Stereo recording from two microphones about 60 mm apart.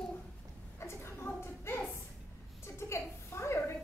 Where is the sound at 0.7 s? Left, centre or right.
Left.